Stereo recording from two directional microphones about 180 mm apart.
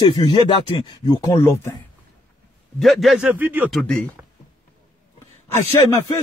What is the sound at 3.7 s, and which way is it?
Speech, 5° left (ahead or behind).